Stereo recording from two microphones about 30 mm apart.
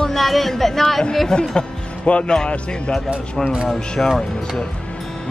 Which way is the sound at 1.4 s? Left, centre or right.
Left.